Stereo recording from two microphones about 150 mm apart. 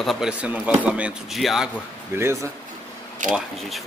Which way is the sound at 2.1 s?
15° right (ahead or behind).